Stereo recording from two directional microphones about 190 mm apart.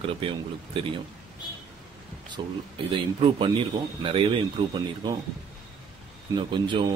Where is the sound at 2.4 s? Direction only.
20° right (ahead or behind).